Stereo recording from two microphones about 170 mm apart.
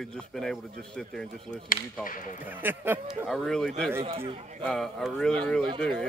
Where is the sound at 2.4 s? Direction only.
10° right (ahead or behind).